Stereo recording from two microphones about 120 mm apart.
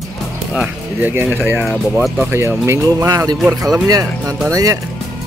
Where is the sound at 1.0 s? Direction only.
20° right (ahead or behind).